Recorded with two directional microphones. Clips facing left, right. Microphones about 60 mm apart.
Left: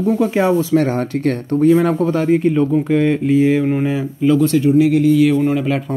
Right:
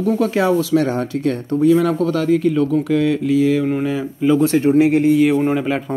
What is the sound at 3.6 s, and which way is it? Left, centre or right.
Speech, centre.